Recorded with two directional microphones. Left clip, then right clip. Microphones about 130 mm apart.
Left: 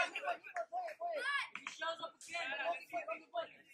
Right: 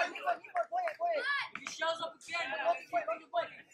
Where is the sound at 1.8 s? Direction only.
25° right (ahead or behind).